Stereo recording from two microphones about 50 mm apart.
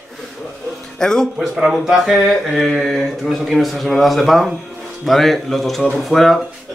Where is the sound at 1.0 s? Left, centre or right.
Centre.